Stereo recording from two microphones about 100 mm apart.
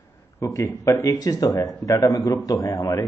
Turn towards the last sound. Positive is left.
turn(degrees=30)  # may be behind; listen again after turning